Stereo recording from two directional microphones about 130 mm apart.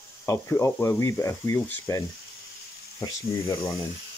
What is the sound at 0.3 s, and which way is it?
Speech, 20° left (ahead or behind).